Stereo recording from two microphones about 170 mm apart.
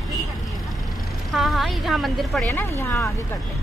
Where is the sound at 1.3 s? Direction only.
Centre (ahead or behind).